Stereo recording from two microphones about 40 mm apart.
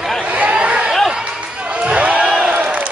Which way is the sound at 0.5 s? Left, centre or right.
Right.